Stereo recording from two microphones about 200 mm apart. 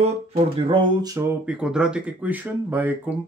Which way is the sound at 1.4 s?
5° right (ahead or behind).